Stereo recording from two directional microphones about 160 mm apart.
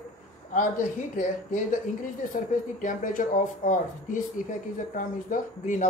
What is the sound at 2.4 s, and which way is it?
Speech, 55° left (ahead or behind).